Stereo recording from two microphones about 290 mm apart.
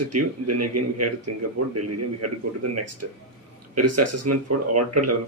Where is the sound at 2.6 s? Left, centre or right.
Right.